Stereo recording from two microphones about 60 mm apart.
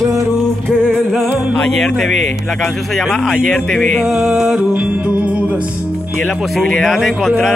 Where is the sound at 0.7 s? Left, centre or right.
Centre.